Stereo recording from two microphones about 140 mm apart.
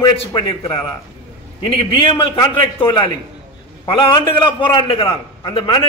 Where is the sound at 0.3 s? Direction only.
35° left (ahead or behind).